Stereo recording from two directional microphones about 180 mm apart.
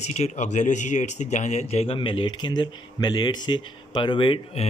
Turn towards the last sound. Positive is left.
turn(degrees=30)  # may be behind; listen again after turning